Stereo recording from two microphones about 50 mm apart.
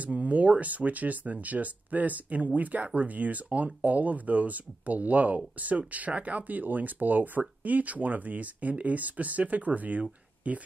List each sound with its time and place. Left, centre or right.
0.0 s speech: right